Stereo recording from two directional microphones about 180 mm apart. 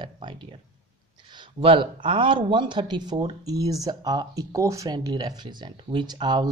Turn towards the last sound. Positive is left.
turn(degrees=-25)  # may be behind; listen again after turning